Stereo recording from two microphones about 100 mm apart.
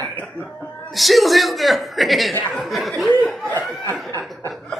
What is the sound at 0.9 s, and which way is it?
A man's voice, centre (ahead or behind).